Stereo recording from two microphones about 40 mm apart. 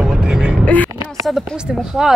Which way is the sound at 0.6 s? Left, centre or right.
Left.